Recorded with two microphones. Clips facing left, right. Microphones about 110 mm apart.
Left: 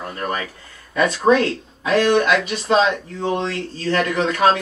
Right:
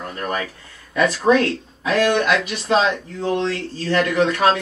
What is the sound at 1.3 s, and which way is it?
Speech, 20° left (ahead or behind).